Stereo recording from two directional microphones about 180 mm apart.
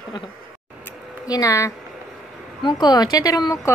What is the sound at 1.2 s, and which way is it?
A woman's voice, 20° left (ahead or behind).